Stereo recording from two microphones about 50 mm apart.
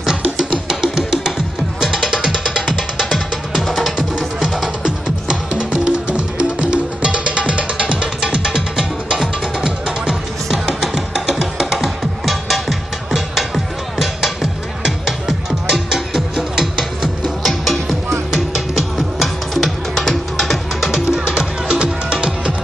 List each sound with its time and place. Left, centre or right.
0.1 s music: centre
4.4 s music: centre
21.6 s music: centre